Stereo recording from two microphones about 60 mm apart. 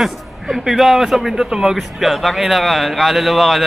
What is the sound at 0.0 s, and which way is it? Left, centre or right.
A man's voice, centre.